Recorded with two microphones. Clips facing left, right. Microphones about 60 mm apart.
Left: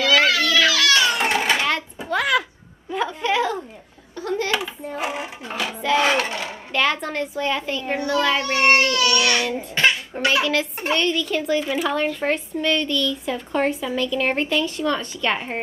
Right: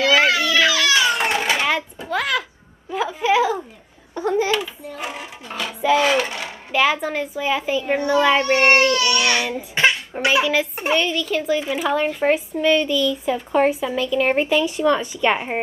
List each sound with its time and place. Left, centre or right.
0.0 s baby cry: centre
1.5 s a sound: centre
2.0 s a sound: centre
4.1 s laughter: right
4.9 s music: centre
5.8 s music: centre
6.3 s a child's voice: centre
8.4 s a child's voice: right